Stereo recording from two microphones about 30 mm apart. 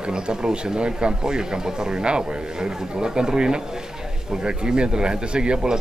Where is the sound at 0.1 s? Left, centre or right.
Right.